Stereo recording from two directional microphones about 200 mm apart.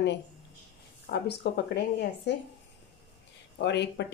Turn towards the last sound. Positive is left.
turn(degrees=60)  # may be behind; listen again after turning